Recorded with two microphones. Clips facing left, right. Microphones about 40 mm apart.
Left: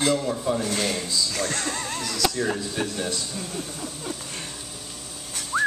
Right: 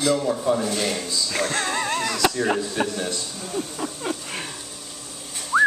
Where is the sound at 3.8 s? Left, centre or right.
Right.